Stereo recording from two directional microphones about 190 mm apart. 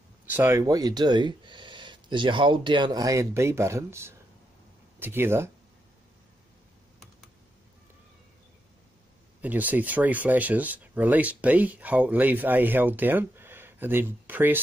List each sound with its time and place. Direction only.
0.3 s speech: 10° right (ahead or behind)
9.4 s speech: 10° right (ahead or behind)